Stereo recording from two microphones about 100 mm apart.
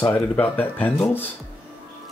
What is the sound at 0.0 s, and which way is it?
Speech, 20° left (ahead or behind).